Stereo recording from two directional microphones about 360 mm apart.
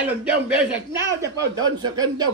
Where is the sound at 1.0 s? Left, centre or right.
Centre.